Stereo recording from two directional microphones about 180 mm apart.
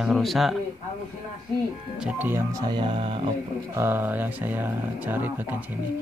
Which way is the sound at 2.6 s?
25° right (ahead or behind).